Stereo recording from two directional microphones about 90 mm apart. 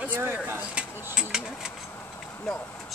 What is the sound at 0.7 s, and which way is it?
Speech, 10° right (ahead or behind).